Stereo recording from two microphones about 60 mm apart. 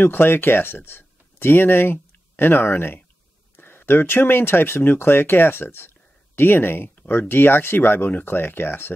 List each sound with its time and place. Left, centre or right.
0.0 s speech: left